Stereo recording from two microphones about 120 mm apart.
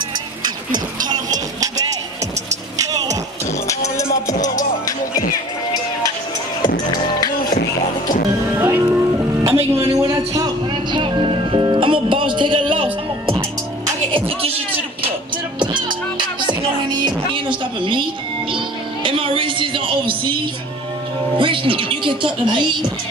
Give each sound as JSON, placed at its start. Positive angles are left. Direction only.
{"t": 0.4, "sound": "a sound", "side_deg": -40}
{"t": 2.8, "sound": "a sound", "side_deg": -30}
{"t": 3.6, "sound": "music", "side_deg": 25}
{"t": 7.2, "sound": "music", "side_deg": 35}
{"t": 8.5, "sound": "music", "side_deg": -15}
{"t": 14.1, "sound": "music", "side_deg": -50}
{"t": 15.6, "sound": "music", "side_deg": -40}
{"t": 19.0, "sound": "music", "side_deg": -45}
{"t": 21.4, "sound": "speech", "side_deg": -45}